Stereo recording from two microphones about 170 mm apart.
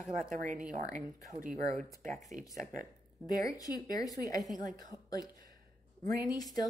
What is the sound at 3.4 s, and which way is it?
Speech, 20° left (ahead or behind).